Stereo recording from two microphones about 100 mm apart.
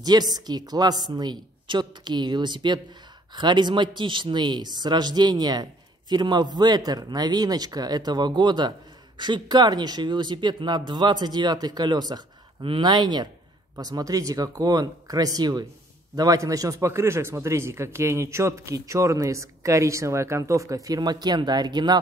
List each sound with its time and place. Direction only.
0.0 s a man's voice: 40° right (ahead or behind)